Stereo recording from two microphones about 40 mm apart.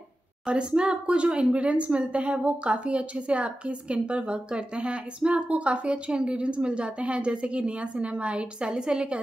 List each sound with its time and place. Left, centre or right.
0.5 s a woman's voice: right